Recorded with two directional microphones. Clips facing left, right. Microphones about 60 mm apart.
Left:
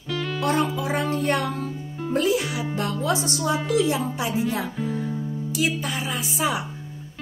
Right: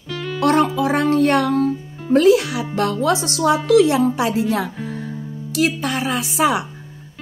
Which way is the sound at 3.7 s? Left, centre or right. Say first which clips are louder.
Right 11 dB; right.